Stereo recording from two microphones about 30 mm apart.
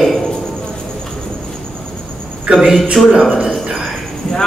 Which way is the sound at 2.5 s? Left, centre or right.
Right.